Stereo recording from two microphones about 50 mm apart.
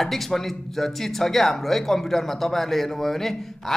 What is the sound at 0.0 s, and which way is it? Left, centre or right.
A man's voice, centre.